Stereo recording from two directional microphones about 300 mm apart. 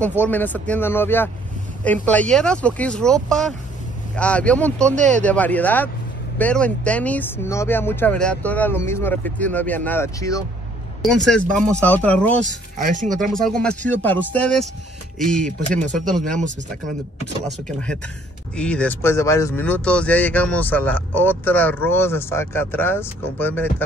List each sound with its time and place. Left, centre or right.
0.2 s speech: centre
4.9 s speech: right
5.2 s speech: centre
12.8 s speech: right
13.1 s speech: centre
17.5 s speech: centre